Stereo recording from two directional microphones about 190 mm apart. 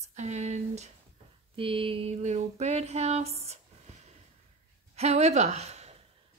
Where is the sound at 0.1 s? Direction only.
35° right (ahead or behind).